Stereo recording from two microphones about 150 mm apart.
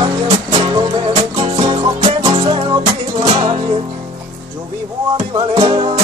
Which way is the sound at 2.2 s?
30° right (ahead or behind).